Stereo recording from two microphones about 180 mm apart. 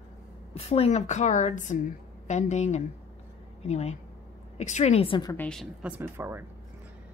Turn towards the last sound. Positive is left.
turn(degrees=-15)  # may be behind; listen again after turning